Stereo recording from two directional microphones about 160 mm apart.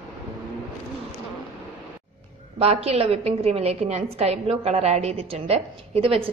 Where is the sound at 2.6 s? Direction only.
40° right (ahead or behind).